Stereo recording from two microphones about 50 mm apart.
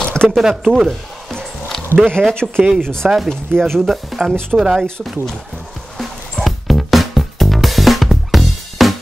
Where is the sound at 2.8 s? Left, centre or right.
Centre.